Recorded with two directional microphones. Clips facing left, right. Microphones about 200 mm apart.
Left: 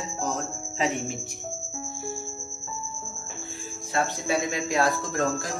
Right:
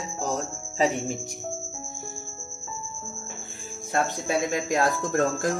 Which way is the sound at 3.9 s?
45° right (ahead or behind).